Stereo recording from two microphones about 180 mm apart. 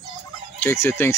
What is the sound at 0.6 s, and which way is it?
Speech, 15° left (ahead or behind).